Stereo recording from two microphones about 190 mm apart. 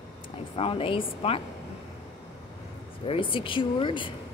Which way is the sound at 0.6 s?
30° left (ahead or behind).